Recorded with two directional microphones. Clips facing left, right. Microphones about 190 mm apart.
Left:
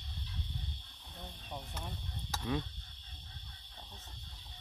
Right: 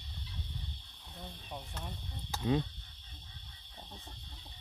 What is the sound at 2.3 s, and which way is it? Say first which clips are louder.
Cricket: right 5 dB; 25° right (ahead or behind).